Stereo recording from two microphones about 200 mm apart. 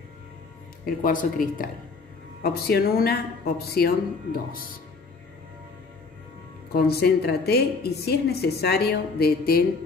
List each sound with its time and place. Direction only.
0.8 s a woman's voice: 45° left (ahead or behind)
6.7 s a woman's voice: 50° left (ahead or behind)